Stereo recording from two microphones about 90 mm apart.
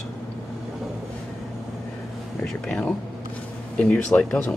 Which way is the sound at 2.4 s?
10° left (ahead or behind).